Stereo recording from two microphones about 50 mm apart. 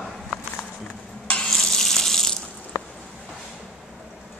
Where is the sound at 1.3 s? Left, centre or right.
Centre.